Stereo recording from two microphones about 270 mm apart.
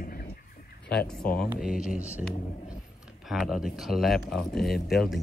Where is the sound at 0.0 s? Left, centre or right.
Left.